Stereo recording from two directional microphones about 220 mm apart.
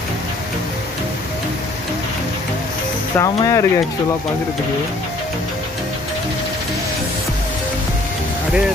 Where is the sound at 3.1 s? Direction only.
15° left (ahead or behind).